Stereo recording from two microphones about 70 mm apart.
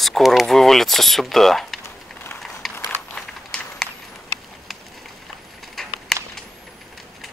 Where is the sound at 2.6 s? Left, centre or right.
Centre.